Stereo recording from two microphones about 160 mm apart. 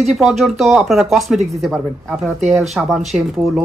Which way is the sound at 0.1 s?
Centre (ahead or behind).